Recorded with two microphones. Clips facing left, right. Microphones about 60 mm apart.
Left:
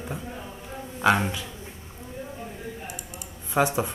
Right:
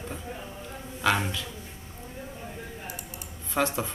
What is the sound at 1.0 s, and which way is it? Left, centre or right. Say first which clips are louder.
Speech: left 4 dB; left.